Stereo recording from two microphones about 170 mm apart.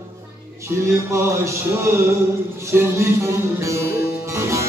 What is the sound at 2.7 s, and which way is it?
Music, 15° right (ahead or behind).